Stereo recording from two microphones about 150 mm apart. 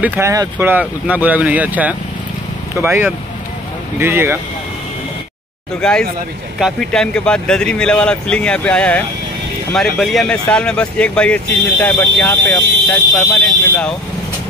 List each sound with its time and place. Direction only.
0.0 s speech: 15° right (ahead or behind)
5.8 s speech: 5° left (ahead or behind)
13.1 s speech: 20° left (ahead or behind)